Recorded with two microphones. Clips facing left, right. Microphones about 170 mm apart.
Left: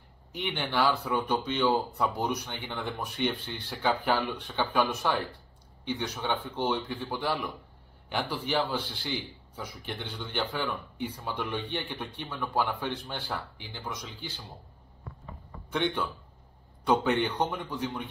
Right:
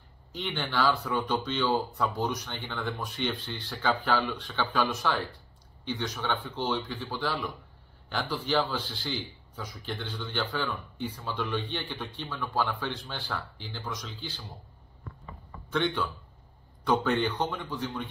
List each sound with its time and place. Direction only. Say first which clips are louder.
0.3 s speech: left 1 dB; 15° left (ahead or behind)
9.8 s speech: right 3 dB; 15° left (ahead or behind)
15.7 s a man's voice: right 1 dB; 20° left (ahead or behind)